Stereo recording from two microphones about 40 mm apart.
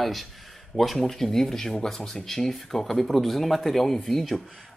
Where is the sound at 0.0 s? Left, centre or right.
Centre.